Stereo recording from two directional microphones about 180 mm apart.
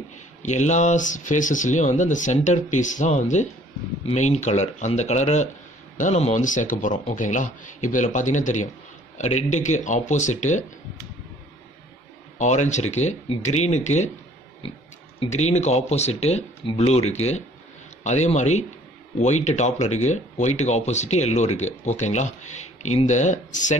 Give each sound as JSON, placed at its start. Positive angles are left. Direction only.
{"t": 0.4, "sound": "speech", "side_deg": 40}
{"t": 12.4, "sound": "speech", "side_deg": 40}
{"t": 15.1, "sound": "speech", "side_deg": 40}